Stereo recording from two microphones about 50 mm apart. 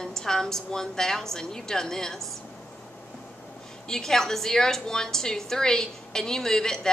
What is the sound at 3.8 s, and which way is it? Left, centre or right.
A woman's voice, centre.